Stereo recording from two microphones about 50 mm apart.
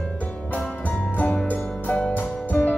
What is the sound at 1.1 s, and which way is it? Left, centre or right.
Music, left.